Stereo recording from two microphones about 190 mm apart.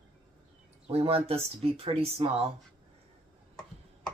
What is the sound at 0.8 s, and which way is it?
Speech, 30° right (ahead or behind).